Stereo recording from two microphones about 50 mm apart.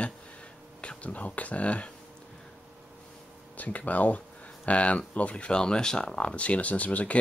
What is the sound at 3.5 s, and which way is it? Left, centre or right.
Speech, left.